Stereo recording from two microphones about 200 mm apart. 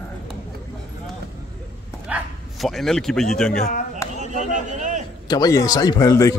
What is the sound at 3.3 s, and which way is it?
Speech, 5° left (ahead or behind).